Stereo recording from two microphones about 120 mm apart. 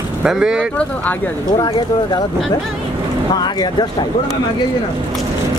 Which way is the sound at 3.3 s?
35° left (ahead or behind).